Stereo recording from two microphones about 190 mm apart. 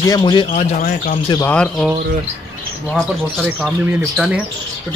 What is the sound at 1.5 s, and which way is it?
Speech, 5° left (ahead or behind).